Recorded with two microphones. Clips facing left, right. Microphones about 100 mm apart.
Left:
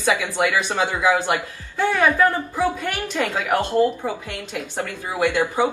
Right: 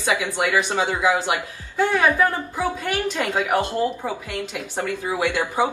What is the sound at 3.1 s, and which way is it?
A woman's voice, 15° right (ahead or behind).